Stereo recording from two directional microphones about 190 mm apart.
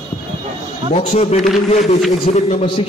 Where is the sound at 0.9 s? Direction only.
35° left (ahead or behind).